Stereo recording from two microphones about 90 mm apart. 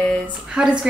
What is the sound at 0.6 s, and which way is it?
Speech, 10° right (ahead or behind).